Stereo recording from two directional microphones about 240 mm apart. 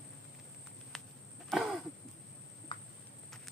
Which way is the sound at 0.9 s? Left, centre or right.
Centre.